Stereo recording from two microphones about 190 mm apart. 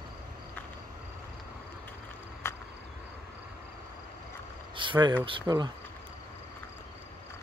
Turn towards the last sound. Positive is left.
turn(degrees=-20)  # may be behind; listen again after turning